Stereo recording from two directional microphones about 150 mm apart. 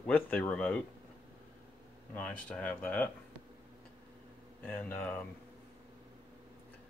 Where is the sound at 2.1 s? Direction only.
10° left (ahead or behind).